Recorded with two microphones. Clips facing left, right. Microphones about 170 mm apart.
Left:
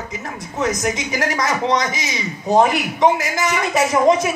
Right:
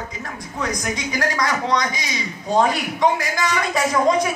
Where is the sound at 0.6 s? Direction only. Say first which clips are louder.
Left 5 dB; 20° left (ahead or behind).